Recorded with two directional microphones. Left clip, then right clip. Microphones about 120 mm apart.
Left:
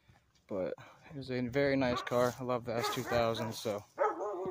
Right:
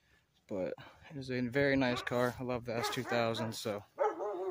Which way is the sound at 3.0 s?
25° right (ahead or behind).